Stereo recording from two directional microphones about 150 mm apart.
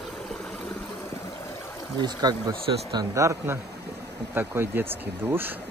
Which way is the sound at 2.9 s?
25° right (ahead or behind).